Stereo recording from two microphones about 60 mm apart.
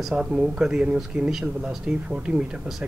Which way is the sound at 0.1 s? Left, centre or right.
Centre.